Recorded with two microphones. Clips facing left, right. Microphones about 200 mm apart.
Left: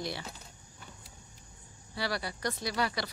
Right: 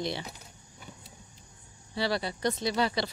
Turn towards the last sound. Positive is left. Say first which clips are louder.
# right 4 dB
turn(degrees=-25)  # may be behind; listen again after turning